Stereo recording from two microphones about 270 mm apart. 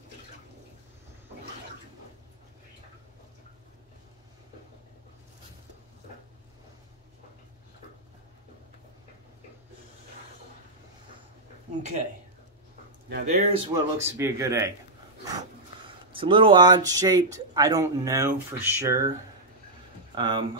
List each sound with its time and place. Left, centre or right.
13.1 s speech: right; by 14.7 s centre
16.1 s speech: centre
20.2 s speech: centre